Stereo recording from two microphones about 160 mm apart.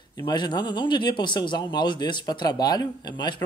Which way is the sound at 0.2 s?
30° left (ahead or behind).